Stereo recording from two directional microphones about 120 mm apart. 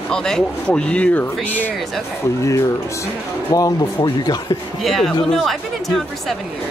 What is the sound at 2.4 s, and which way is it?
Speech, 25° left (ahead or behind).